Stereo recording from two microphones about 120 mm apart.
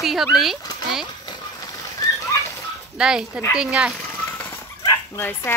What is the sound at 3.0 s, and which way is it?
Speech, 5° right (ahead or behind).